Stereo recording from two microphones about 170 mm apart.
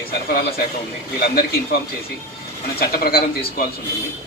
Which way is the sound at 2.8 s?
60° left (ahead or behind).